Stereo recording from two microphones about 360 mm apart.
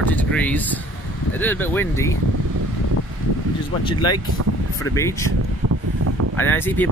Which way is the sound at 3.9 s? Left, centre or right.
Centre.